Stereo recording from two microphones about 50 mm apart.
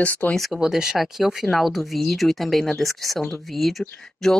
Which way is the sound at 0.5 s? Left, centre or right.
Centre.